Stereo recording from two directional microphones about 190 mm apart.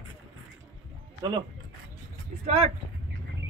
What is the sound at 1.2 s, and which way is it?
Speech, 20° right (ahead or behind).